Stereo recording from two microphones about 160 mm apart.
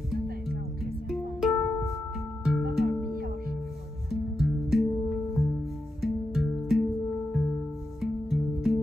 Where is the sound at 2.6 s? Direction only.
75° right (ahead or behind).